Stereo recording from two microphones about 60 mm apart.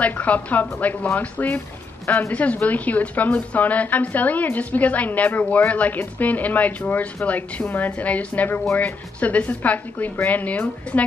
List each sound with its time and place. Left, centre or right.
0.0 s a woman's voice: left
2.0 s speech: left
2.3 s a woman's voice: left